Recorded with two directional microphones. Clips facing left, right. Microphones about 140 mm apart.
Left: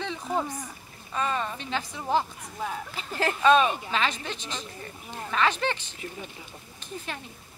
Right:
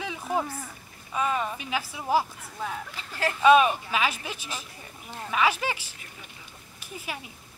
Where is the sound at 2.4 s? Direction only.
5° left (ahead or behind).